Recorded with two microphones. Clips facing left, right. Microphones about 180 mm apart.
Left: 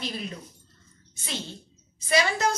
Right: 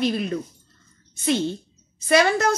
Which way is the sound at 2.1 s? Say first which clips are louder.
Right 6 dB; 60° right (ahead or behind).